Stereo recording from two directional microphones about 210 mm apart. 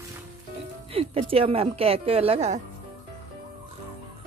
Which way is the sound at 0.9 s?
25° right (ahead or behind).